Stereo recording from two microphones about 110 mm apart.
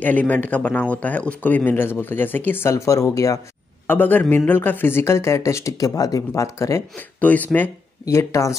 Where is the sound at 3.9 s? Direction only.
15° left (ahead or behind).